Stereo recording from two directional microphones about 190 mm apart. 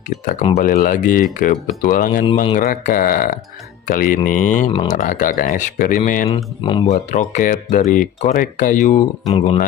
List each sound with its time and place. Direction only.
0.6 s speech: 45° left (ahead or behind)
6.3 s speech: 25° left (ahead or behind)
6.9 s speech: 40° left (ahead or behind)